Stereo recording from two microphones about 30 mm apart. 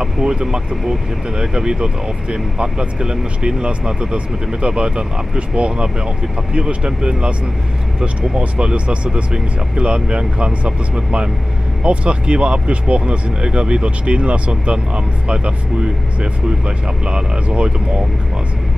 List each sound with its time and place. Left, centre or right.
0.0 s speech: right
8.4 s speech: right